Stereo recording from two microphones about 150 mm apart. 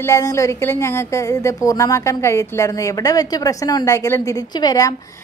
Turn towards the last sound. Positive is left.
turn(degrees=25)  # may be behind; listen again after turning